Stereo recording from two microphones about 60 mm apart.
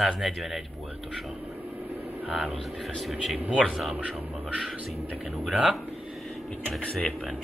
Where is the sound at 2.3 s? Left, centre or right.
Centre.